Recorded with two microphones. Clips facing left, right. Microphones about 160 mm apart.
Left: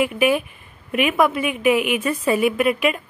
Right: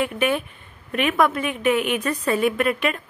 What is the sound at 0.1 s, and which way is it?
A woman's voice, 5° left (ahead or behind).